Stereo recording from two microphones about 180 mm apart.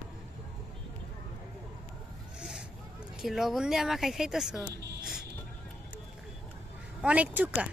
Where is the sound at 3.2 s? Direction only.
Centre (ahead or behind).